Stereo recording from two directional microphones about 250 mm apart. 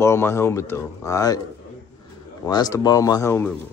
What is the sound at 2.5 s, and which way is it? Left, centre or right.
Speech, centre.